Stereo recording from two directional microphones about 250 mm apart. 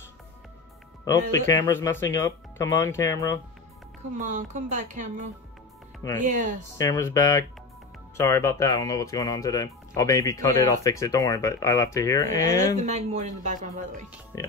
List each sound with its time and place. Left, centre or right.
1.5 s speech: centre
4.2 s speech: right
6.8 s speech: centre
12.7 s speech: right
14.3 s speech: centre